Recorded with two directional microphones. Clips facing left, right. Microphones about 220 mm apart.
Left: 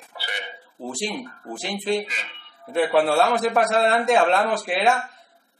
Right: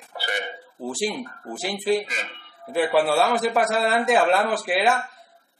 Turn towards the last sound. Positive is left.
turn(degrees=0)  # may be behind; listen again after turning